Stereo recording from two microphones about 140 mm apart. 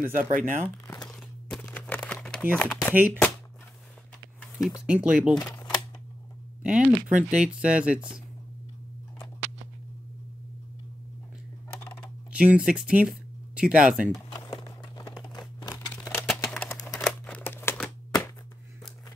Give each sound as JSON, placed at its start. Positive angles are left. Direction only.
{"t": 0.0, "sound": "speech", "side_deg": -80}
{"t": 1.0, "sound": "crumpling", "side_deg": 10}
{"t": 2.7, "sound": "speech", "side_deg": -10}
{"t": 4.4, "sound": "a sound", "side_deg": 0}
{"t": 4.8, "sound": "speech", "side_deg": -5}
{"t": 5.5, "sound": "typewriter", "side_deg": 25}
{"t": 6.6, "sound": "speech", "side_deg": -10}
{"t": 12.3, "sound": "speech", "side_deg": -10}
{"t": 14.1, "sound": "a sound", "side_deg": 25}
{"t": 16.1, "sound": "a sound", "side_deg": 15}
{"t": 16.4, "sound": "a sound", "side_deg": 0}
{"t": 16.9, "sound": "crumpling", "side_deg": 0}
{"t": 17.4, "sound": "crumpling", "side_deg": 15}